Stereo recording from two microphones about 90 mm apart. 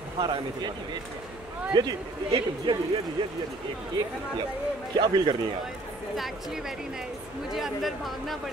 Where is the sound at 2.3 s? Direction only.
60° right (ahead or behind).